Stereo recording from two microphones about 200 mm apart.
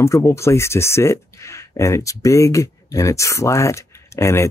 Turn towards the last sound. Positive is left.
turn(degrees=15)  # may be behind; listen again after turning